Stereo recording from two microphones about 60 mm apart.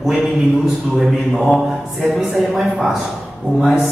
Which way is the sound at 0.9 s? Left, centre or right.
Centre.